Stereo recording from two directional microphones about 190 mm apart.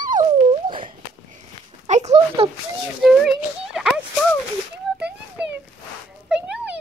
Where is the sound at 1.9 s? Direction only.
35° right (ahead or behind).